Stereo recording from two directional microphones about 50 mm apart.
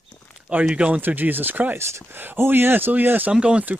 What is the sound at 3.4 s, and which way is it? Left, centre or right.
Speech, right.